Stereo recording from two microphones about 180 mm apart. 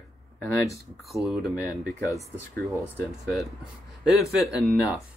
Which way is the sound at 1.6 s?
20° left (ahead or behind).